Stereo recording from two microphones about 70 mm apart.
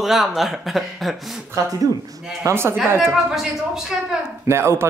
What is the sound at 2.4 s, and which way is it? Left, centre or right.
Speech, right.